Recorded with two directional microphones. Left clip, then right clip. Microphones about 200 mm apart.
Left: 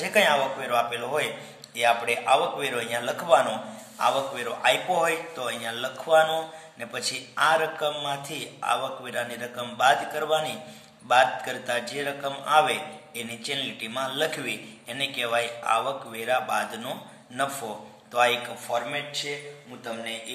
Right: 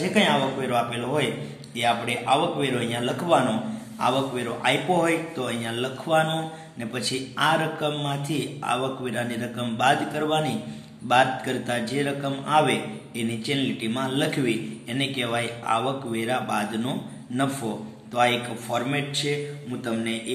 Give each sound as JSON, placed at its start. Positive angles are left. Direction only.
{"t": 0.1, "sound": "a man's voice", "side_deg": 25}
{"t": 18.1, "sound": "a man's voice", "side_deg": 15}